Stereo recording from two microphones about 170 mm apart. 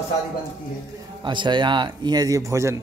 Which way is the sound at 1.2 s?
30° right (ahead or behind).